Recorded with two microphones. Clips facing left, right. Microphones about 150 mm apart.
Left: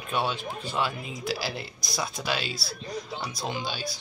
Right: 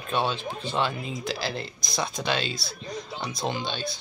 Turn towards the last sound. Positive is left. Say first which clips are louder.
# right 3 dB
turn(degrees=5)  # may be behind; listen again after turning